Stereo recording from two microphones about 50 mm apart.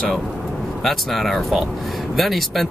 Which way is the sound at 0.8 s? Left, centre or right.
Centre.